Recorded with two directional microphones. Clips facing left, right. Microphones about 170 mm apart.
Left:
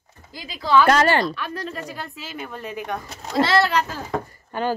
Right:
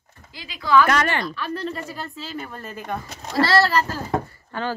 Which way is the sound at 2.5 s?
Centre (ahead or behind).